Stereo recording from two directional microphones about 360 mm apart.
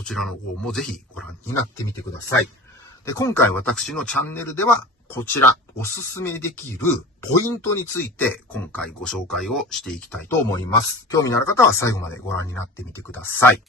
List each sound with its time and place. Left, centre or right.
0.0 s speech: centre
3.1 s speech: centre